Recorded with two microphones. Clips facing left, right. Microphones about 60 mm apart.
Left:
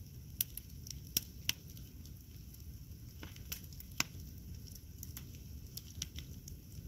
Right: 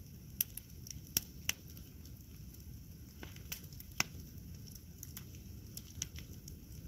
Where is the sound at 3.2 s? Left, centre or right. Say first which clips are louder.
Right 1 dB; centre.